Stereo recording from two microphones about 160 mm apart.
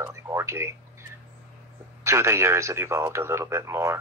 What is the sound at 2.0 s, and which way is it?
Speech, 15° right (ahead or behind).